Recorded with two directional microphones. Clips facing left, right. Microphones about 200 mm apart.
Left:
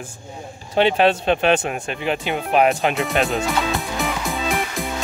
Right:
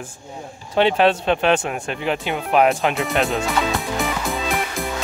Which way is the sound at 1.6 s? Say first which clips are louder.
Even; 20° left (ahead or behind).